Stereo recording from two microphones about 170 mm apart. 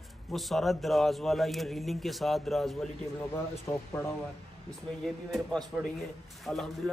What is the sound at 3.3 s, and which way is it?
Speech, 15° left (ahead or behind).